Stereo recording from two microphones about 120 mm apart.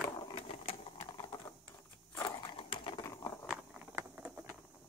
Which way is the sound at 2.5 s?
45° left (ahead or behind).